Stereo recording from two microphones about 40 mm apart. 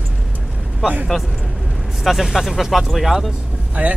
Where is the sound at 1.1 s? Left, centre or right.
Centre.